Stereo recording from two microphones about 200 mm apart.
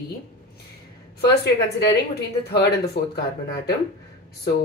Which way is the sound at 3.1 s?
55° left (ahead or behind).